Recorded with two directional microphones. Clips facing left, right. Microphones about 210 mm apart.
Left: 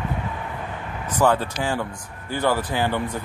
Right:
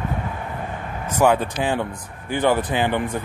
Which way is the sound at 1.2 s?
15° right (ahead or behind).